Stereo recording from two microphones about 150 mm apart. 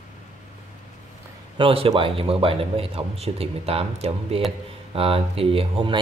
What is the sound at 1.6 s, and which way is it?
Speech, 40° right (ahead or behind).